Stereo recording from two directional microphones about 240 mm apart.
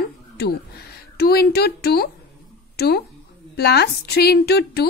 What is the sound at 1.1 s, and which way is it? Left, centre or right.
Speech, left.